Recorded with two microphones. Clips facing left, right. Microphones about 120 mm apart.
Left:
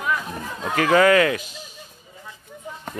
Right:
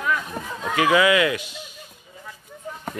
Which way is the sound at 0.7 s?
45° left (ahead or behind).